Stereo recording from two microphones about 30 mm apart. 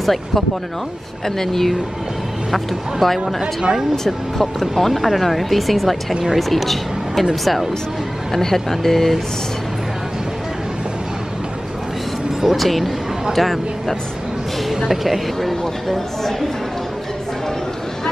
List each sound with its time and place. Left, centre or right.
0.0 s speech: centre
8.3 s speech: centre
12.4 s speech: centre
14.7 s speech: centre
15.6 s speech: centre